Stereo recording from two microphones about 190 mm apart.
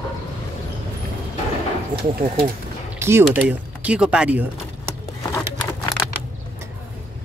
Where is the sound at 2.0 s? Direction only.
55° right (ahead or behind).